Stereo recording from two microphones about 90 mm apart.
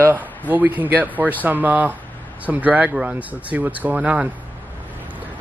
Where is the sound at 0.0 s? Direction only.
20° right (ahead or behind).